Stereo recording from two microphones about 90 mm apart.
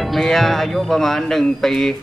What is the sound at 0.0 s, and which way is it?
Speech, centre (ahead or behind).